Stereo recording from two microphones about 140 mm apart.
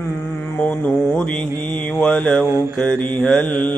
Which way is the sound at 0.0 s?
10° left (ahead or behind).